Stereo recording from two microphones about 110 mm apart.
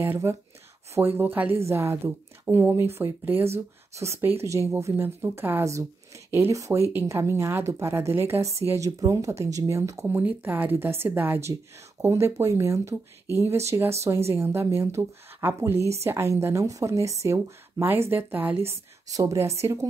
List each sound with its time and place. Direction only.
0.0 s a woman's voice: 20° right (ahead or behind)
10.0 s a woman's voice: 15° right (ahead or behind)
19.0 s a woman's voice: 30° right (ahead or behind)